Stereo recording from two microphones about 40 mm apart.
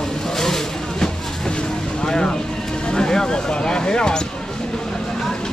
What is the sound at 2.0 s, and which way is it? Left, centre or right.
Speech, centre.